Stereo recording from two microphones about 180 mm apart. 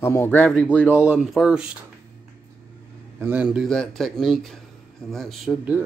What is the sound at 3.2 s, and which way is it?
Speech, 10° right (ahead or behind).